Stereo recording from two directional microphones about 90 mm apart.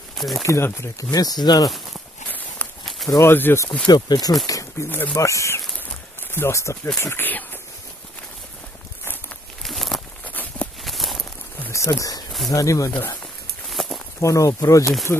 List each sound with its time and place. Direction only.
0.4 s speech: 35° left (ahead or behind)
2.2 s walk: 20° left (ahead or behind)
2.8 s a sound: centre (ahead or behind)
3.1 s speech: 30° left (ahead or behind)
3.8 s speech: 50° left (ahead or behind)
4.8 s speech: 20° left (ahead or behind)
5.1 s a sound: 35° left (ahead or behind)
6.3 s speech: 30° left (ahead or behind)
9.6 s a sound: centre (ahead or behind)
10.2 s walk: 20° left (ahead or behind)
10.8 s a sound: centre (ahead or behind)
11.7 s speech: 35° left (ahead or behind)
13.7 s walk: centre (ahead or behind)
14.2 s speech: 35° left (ahead or behind)